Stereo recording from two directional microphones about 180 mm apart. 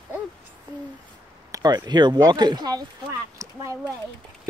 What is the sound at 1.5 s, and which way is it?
Speech, 20° right (ahead or behind).